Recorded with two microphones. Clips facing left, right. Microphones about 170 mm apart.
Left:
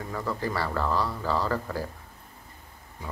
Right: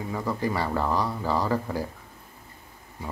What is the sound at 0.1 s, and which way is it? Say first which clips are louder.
Speech: right 2 dB; 15° right (ahead or behind).